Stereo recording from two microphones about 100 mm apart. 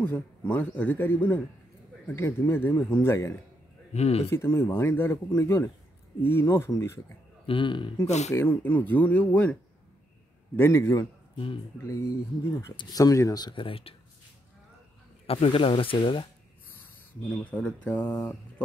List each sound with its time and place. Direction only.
0.0 s speech: 15° left (ahead or behind)
3.9 s speech: 90° left
4.3 s speech: 25° left (ahead or behind)
7.4 s speech: 55° left (ahead or behind)
8.0 s speech: 25° left (ahead or behind)
10.5 s speech: 25° left (ahead or behind)
11.3 s speech: 60° left (ahead or behind)
11.8 s speech: 30° left (ahead or behind)
13.6 s speech: 65° left (ahead or behind)
15.2 s speech: 70° left (ahead or behind)
17.3 s speech: 10° left (ahead or behind)